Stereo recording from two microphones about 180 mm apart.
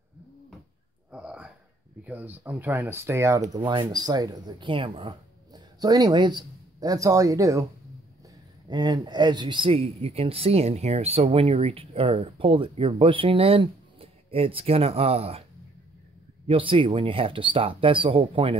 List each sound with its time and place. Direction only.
1.1 s a sound: 5° right (ahead or behind)
2.0 s speech: 10° right (ahead or behind)
3.5 s speech: 25° right (ahead or behind)
8.6 s speech: 25° right (ahead or behind)
16.4 s speech: 30° right (ahead or behind)